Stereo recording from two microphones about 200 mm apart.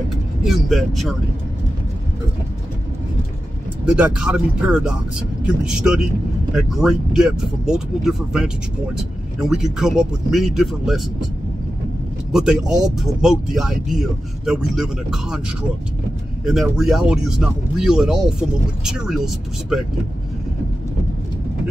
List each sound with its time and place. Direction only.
0.5 s speech: centre (ahead or behind)
3.9 s speech: 5° right (ahead or behind)
12.3 s speech: centre (ahead or behind)
16.4 s speech: centre (ahead or behind)